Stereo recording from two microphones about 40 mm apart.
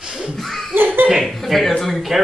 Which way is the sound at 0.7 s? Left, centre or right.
Right.